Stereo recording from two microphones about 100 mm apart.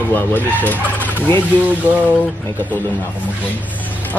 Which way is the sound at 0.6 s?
15° left (ahead or behind).